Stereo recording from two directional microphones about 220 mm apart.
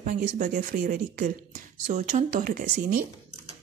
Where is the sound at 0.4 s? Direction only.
40° right (ahead or behind).